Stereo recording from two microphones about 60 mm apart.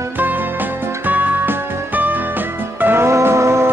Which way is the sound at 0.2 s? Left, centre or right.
Right.